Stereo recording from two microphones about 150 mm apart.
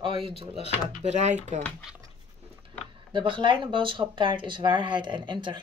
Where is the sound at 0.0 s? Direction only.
40° right (ahead or behind).